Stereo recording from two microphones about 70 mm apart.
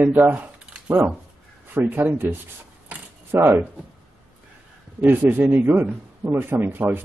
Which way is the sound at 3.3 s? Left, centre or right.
Right.